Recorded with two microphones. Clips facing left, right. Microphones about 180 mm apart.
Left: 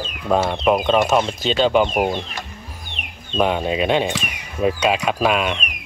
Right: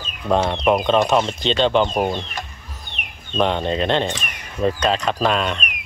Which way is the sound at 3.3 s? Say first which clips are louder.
Left 1 dB; 5° left (ahead or behind).